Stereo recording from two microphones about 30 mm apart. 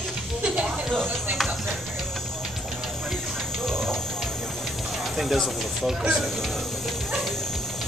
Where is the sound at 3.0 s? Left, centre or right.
Centre.